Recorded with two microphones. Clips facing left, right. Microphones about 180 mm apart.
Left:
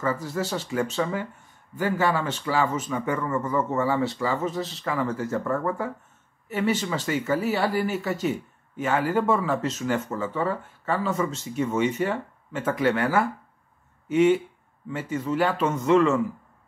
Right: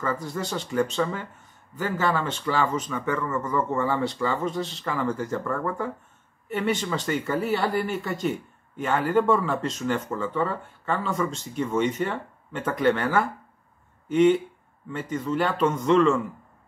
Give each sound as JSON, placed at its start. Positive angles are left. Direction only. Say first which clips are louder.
{"t": 0.0, "sound": "speech", "louder": "left 2 dB", "side_deg": 5}
{"t": 6.5, "sound": "speech", "louder": "left 1 dB", "side_deg": 5}